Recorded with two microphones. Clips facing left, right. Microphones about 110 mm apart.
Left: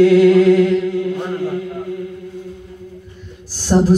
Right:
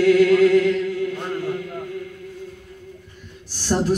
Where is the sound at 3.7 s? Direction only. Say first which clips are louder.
Left 7 dB; 25° left (ahead or behind).